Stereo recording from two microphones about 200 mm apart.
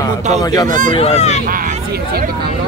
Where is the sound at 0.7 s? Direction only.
40° right (ahead or behind).